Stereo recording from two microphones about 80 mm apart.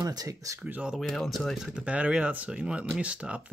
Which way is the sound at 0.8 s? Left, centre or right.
Centre.